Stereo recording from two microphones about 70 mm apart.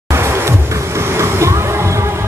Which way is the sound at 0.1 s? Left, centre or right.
Right.